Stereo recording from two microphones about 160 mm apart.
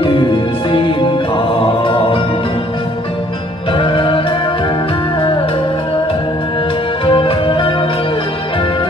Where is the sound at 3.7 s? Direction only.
30° left (ahead or behind).